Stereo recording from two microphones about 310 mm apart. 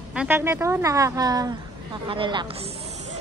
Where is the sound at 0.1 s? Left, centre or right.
Centre.